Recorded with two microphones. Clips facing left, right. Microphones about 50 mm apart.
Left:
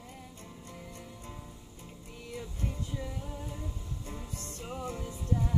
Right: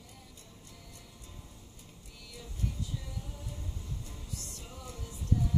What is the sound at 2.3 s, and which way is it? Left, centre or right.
Music, left.